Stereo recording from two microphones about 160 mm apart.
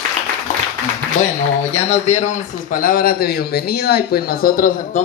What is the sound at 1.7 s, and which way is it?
A man's voice, 45° left (ahead or behind).